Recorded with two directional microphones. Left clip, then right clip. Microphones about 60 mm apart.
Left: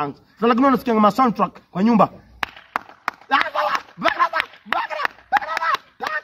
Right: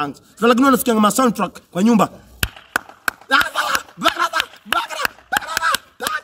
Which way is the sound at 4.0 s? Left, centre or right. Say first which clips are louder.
Even; right.